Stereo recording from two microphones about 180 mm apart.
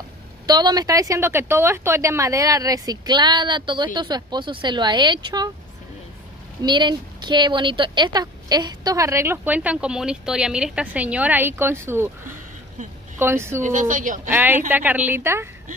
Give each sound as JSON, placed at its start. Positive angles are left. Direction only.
{"t": 0.5, "sound": "a woman's voice", "side_deg": -25}
{"t": 6.6, "sound": "a woman's voice", "side_deg": -25}
{"t": 13.2, "sound": "a woman's voice", "side_deg": -15}
{"t": 13.6, "sound": "speech", "side_deg": -45}
{"t": 14.3, "sound": "a woman's voice", "side_deg": -10}